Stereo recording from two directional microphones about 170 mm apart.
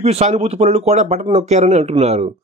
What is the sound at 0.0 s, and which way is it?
A man's voice, 40° right (ahead or behind).